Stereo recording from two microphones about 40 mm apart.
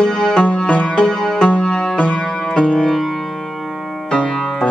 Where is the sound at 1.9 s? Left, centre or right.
Left.